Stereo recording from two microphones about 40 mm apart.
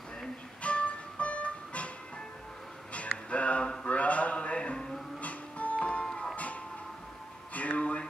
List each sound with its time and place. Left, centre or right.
0.6 s music: left
2.9 s music: left
3.8 s a sound: left
5.2 s music: left
6.0 s music: centre
6.3 s music: left
7.5 s a sound: left